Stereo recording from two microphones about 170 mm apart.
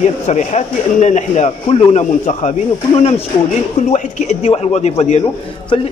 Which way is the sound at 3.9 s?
40° left (ahead or behind).